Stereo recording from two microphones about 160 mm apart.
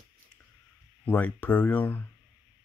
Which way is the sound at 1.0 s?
10° left (ahead or behind).